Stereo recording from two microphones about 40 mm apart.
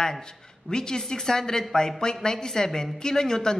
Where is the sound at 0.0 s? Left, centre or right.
Centre.